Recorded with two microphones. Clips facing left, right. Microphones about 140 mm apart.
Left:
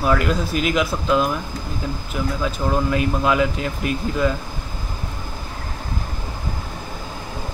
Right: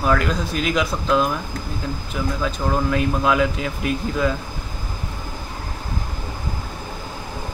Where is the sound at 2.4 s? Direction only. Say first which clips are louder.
Left 1 dB; 5° left (ahead or behind).